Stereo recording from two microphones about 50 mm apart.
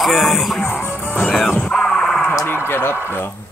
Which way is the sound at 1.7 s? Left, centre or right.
Centre.